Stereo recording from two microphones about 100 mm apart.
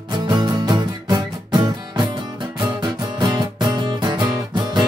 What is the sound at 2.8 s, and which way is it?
Music, 45° right (ahead or behind).